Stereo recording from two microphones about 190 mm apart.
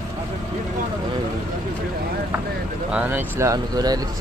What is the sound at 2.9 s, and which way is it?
Speech, 5° right (ahead or behind).